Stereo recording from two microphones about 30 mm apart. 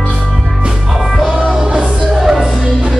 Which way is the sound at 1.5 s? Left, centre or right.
Right.